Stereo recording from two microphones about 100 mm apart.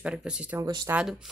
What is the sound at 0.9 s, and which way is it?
Speech, 25° right (ahead or behind).